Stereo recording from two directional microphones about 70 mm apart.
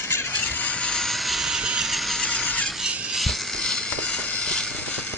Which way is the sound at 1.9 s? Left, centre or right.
Centre.